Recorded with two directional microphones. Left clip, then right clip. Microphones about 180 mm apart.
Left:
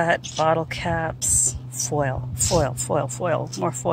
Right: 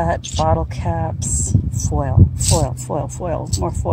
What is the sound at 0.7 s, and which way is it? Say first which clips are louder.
Speech: right 1 dB; centre (ahead or behind).